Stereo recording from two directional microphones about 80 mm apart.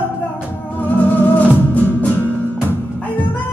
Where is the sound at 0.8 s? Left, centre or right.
Left.